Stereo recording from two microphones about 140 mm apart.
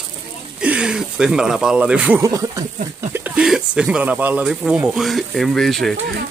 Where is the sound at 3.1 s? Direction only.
10° right (ahead or behind).